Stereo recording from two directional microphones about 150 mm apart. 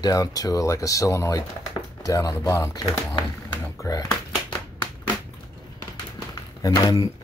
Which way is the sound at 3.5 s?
20° left (ahead or behind).